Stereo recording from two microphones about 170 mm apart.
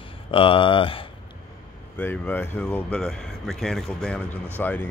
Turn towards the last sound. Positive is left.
turn(degrees=10)  # may be behind; listen again after turning